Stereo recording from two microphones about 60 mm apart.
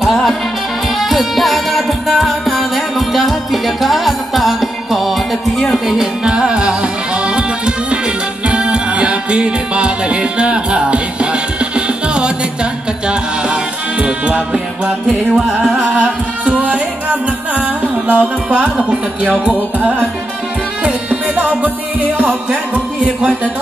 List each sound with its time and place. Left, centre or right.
0.0 s music: centre
15.9 s music: right
23.0 s music: right